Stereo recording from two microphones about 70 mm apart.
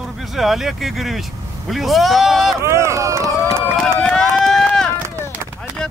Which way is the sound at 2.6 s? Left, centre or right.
Right.